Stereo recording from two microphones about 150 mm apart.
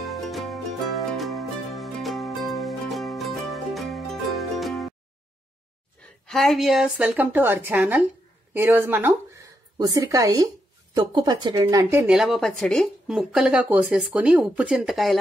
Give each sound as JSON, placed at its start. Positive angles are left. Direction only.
{"t": 0.0, "sound": "music", "side_deg": 0}
{"t": 6.2, "sound": "a woman's voice", "side_deg": 0}
{"t": 12.1, "sound": "speech", "side_deg": 0}